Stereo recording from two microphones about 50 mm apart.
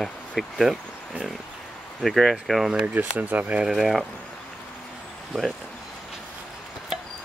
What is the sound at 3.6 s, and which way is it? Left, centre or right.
Speech, centre.